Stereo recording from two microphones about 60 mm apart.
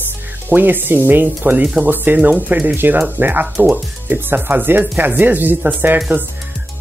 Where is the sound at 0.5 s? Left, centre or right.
Right.